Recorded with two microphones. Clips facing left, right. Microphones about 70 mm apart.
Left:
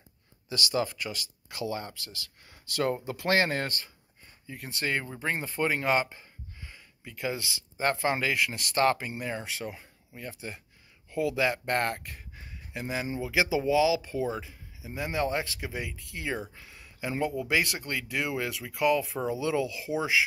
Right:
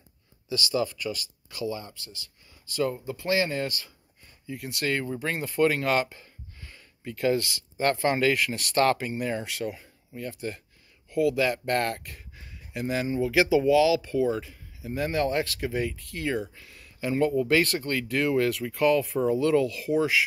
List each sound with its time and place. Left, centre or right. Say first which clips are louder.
0.7 s speech: right 2 dB; left
1.7 s speech: left 1 dB; left
2.0 s speech: left 1 dB; left; by 16.4 s centre
16.5 s a sound: even; left
17.4 s speech: right 5 dB; centre